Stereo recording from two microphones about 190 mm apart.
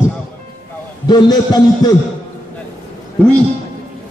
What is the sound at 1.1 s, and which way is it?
Speech, 20° left (ahead or behind).